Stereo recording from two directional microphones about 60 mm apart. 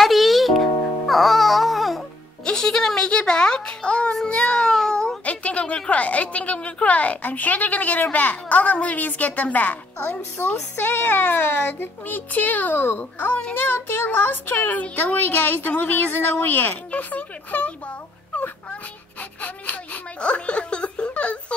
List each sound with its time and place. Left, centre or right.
0.0 s music: centre
2.4 s a sound: centre
4.3 s speech: centre
10.4 s speech: left; by 21.5 s centre